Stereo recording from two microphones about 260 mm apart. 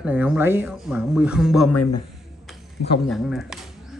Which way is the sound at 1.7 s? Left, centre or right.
Left.